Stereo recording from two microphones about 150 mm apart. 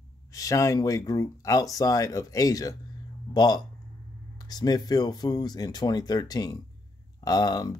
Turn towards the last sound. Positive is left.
turn(degrees=25)  # may be behind; listen again after turning